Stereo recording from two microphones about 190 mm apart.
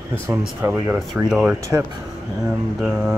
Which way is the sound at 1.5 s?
15° right (ahead or behind).